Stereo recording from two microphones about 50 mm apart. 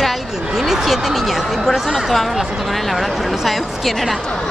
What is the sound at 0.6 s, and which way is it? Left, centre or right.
Speech, centre.